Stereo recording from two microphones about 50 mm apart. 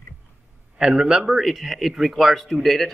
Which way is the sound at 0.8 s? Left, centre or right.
Centre.